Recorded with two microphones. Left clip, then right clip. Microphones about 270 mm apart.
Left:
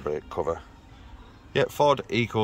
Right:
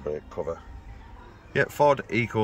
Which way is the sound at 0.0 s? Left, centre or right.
Left.